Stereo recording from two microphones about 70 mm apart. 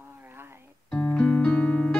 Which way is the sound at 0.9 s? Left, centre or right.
Left.